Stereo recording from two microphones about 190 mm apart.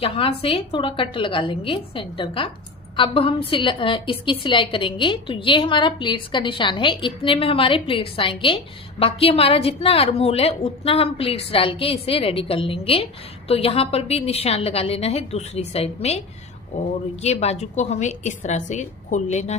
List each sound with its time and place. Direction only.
0.0 s a woman's voice: 30° left (ahead or behind)